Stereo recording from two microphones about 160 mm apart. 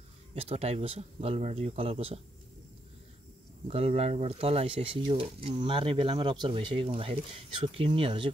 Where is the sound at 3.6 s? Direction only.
40° right (ahead or behind).